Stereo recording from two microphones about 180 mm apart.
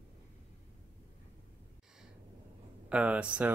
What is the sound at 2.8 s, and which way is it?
Speech, 5° right (ahead or behind).